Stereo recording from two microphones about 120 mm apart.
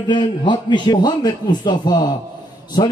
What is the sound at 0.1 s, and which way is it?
A man's voice, 40° left (ahead or behind).